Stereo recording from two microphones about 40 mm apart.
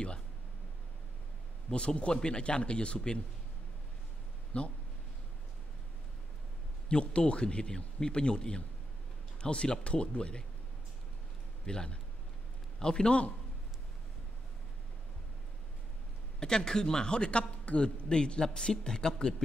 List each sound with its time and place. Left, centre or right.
1.7 s a man's voice: left
4.5 s speech: left
6.9 s a man's voice: left
11.6 s a man's voice: centre
16.3 s a man's voice: centre